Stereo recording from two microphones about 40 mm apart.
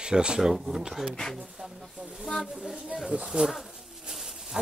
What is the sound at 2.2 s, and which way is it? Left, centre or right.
Speech, centre.